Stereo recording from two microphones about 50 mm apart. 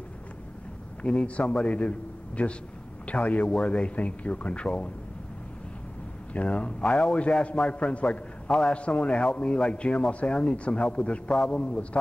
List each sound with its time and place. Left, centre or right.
1.0 s a man's voice: left
6.3 s a man's voice: left
11.3 s a man's voice: centre
11.6 s a man's voice: left